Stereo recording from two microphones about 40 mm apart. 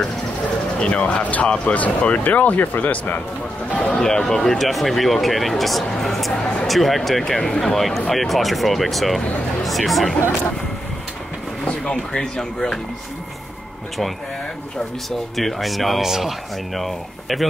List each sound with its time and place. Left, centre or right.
0.7 s speech: left
3.7 s speech: left
4.0 s speech: centre
6.3 s speech: left
6.7 s speech: centre
11.8 s speech: left
15.0 s speech: centre